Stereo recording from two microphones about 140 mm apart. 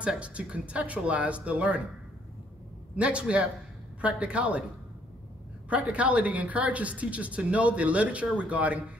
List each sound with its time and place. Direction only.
0.0 s speech: 10° right (ahead or behind)
3.0 s speech: 10° right (ahead or behind)
5.7 s speech: 10° right (ahead or behind)